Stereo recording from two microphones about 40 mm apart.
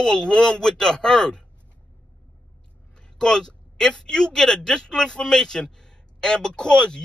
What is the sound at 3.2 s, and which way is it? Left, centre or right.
Speech, centre.